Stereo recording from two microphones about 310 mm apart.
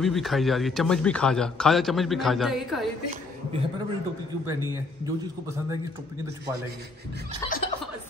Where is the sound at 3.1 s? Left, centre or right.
Centre.